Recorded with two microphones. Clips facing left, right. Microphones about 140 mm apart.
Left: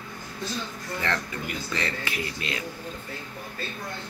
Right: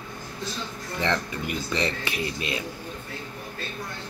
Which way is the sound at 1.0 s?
20° right (ahead or behind).